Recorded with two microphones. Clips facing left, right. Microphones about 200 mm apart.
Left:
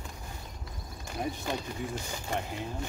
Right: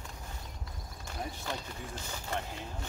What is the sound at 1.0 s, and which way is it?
Speech, 15° left (ahead or behind).